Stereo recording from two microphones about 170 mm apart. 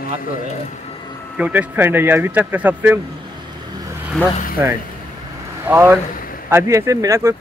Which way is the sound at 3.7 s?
20° right (ahead or behind).